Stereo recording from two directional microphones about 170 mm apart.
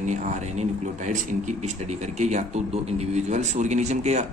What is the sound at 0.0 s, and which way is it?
Speech, 45° right (ahead or behind).